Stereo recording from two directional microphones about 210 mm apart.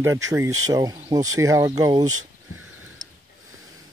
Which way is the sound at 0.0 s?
15° right (ahead or behind).